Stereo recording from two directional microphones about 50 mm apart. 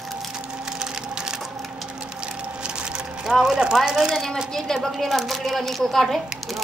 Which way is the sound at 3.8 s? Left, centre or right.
Centre.